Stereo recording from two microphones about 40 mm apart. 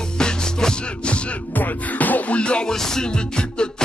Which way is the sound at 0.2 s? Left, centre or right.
Centre.